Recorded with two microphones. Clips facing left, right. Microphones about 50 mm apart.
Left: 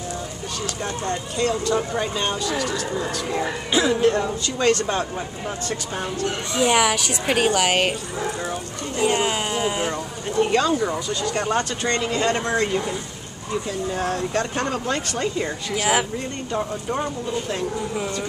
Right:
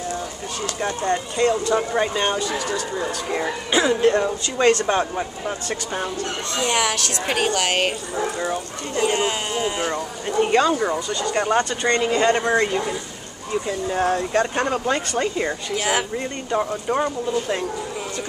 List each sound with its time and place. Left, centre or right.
0.8 s speech: centre
6.5 s a woman's voice: centre
8.2 s speech: right
8.9 s speech: centre
10.4 s speech: centre
15.7 s speech: centre
16.5 s speech: centre